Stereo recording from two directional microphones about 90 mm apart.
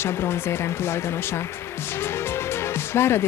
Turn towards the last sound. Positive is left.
turn(degrees=30)  # may be behind; listen again after turning